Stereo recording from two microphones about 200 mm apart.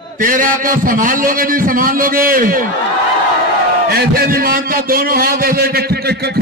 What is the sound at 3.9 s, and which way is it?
A man's voice, 50° right (ahead or behind).